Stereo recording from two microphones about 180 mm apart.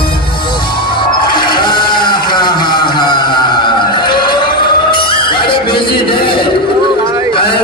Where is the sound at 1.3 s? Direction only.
25° left (ahead or behind).